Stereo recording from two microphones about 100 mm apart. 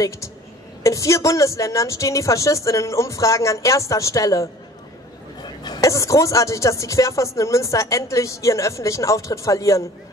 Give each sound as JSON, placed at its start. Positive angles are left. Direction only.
{"t": 0.8, "sound": "speech", "side_deg": 30}
{"t": 5.4, "sound": "a sound", "side_deg": 45}
{"t": 5.8, "sound": "speech", "side_deg": 30}